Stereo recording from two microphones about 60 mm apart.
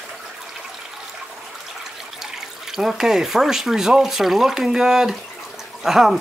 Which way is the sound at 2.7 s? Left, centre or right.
Centre.